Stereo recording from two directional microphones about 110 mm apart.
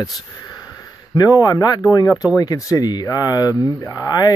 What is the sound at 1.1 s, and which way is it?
Speech, 35° left (ahead or behind).